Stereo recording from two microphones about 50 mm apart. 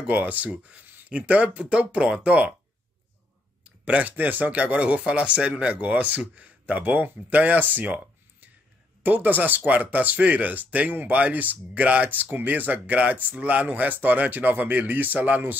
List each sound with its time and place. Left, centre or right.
0.0 s speech: right
3.6 s speech: right
7.7 s a sound: right
9.0 s speech: right